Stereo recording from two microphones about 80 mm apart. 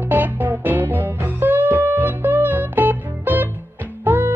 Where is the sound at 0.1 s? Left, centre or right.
Right.